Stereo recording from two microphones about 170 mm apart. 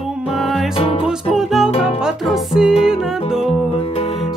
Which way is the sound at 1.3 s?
Centre (ahead or behind).